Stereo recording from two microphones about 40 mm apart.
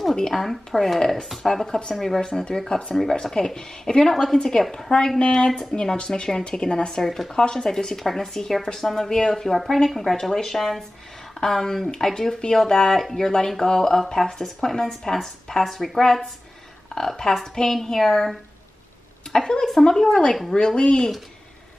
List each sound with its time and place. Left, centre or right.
0.3 s a woman's voice: centre
0.9 s speech: centre
4.1 s speech: centre
7.0 s speech: centre
7.3 s speech: centre
17.2 s a woman's voice: centre
19.3 s speech: centre